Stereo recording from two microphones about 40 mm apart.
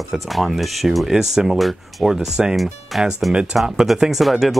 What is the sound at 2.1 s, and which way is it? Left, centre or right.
Speech, centre.